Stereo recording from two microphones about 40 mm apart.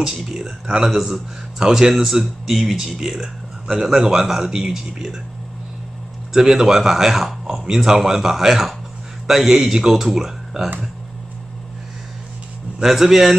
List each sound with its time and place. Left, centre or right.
0.0 s speech: centre
6.3 s speech: centre
12.8 s speech: centre